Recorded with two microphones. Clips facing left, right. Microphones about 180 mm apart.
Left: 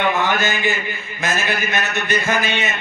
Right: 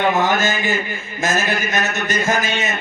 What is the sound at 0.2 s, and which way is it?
A man's voice, 45° right (ahead or behind).